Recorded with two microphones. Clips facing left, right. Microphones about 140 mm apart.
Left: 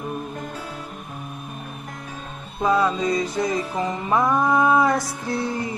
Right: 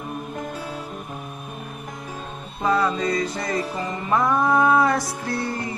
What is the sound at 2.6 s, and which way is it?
Music, 15° left (ahead or behind).